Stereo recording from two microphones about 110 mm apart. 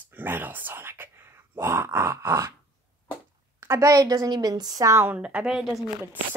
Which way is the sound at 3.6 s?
25° right (ahead or behind).